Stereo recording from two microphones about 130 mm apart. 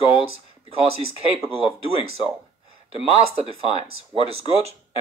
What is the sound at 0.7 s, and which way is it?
Speech, 50° right (ahead or behind).